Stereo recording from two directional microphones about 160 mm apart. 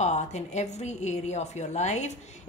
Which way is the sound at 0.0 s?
45° left (ahead or behind).